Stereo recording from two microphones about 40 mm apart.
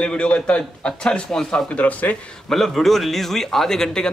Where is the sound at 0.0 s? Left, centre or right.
Left.